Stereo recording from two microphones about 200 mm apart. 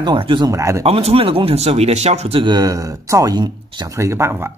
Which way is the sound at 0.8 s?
30° right (ahead or behind).